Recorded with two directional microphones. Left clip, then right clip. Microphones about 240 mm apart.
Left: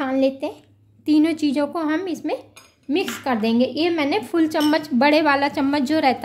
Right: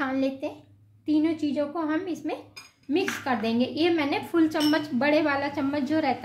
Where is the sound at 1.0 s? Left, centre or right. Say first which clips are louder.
Left 7 dB; left.